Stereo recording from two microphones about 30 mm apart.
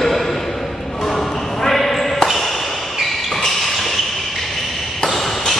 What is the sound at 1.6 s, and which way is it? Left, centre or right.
Ping, centre.